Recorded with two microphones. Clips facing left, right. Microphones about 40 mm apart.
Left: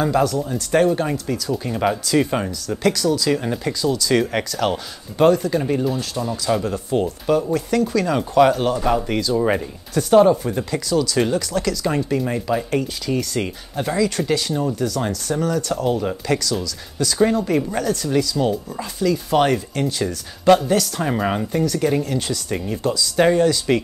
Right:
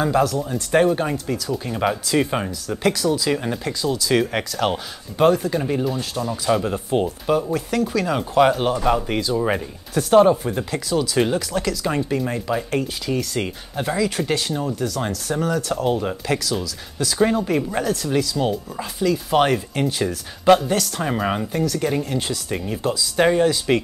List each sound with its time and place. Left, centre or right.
0.0 s speech: centre
6.7 s speech: right
7.4 s speech: centre